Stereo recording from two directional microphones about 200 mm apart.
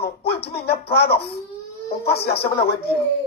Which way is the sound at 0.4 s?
55° left (ahead or behind).